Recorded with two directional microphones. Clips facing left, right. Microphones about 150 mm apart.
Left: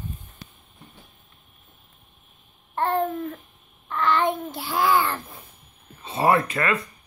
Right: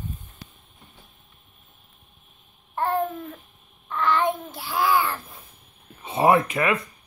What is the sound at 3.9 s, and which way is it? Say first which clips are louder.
Child singing: even; 10° right (ahead or behind).